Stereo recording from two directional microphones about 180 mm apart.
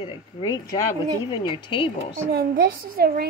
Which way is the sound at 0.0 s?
25° left (ahead or behind).